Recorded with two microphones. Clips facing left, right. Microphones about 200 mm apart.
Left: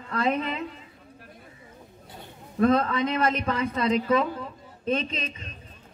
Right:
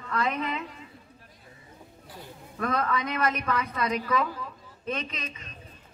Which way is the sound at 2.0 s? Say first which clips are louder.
Right 1 dB; 25° left (ahead or behind).